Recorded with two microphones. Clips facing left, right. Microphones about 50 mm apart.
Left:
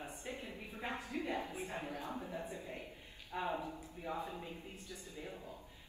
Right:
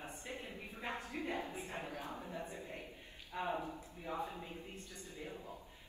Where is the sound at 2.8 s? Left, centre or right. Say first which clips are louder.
Even; left.